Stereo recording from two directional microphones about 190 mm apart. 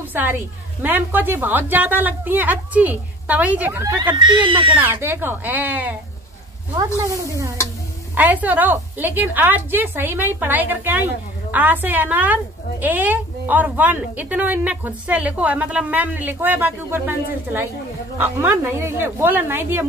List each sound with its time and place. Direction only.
0.1 s a woman's voice: 10° right (ahead or behind)
3.9 s speech: 25° right (ahead or behind)
4.7 s a woman's voice: 10° right (ahead or behind)
7.1 s a woman's voice: 15° right (ahead or behind)